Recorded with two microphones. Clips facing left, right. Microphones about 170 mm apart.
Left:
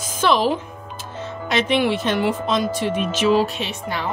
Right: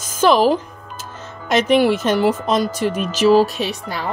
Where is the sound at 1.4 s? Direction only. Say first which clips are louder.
Right 5 dB; 40° right (ahead or behind).